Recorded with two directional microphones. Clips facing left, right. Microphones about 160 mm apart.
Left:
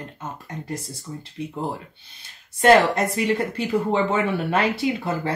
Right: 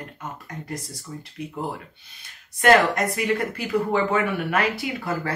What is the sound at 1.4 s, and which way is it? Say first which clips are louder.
Speech: left 3 dB; 30° left (ahead or behind).